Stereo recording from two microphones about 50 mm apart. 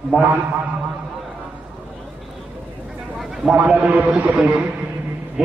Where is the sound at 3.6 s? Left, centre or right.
Right.